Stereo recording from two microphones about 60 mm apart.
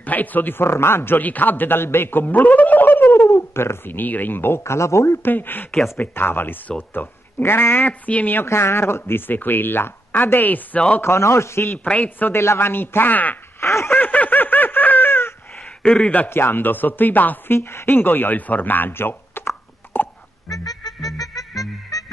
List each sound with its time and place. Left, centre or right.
0.0 s speech: left
5.2 s speech: left
7.8 s a woman's voice: left
8.5 s speech: left
11.0 s a man's voice: left
11.8 s a woman's voice: left
12.3 s speech: left
13.6 s a sound: left
13.9 s snicker: left
15.8 s a woman's voice: centre
16.3 s speech: left
17.6 s speech: left
20.4 s music: left